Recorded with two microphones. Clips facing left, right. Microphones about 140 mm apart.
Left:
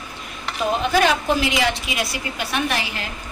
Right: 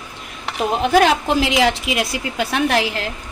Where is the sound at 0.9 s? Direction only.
85° right.